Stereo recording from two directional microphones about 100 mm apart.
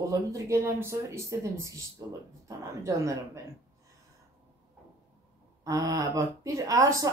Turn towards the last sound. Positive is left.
turn(degrees=-35)  # may be behind; listen again after turning